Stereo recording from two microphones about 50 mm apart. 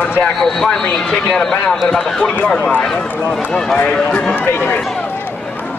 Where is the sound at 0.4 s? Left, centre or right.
Centre.